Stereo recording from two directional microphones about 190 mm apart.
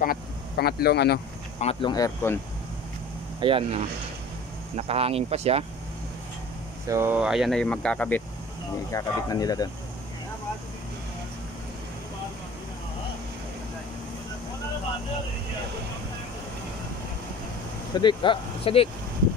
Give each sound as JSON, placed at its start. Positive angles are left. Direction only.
{"t": 0.0, "sound": "speech", "side_deg": 50}
{"t": 1.6, "sound": "speech", "side_deg": 30}
{"t": 3.3, "sound": "speech", "side_deg": -30}
{"t": 6.9, "sound": "speech", "side_deg": -10}
{"t": 8.9, "sound": "speech", "side_deg": 20}
{"t": 18.0, "sound": "speech", "side_deg": 25}